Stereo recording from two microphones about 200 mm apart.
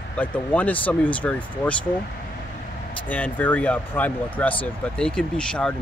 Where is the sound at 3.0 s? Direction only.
10° left (ahead or behind).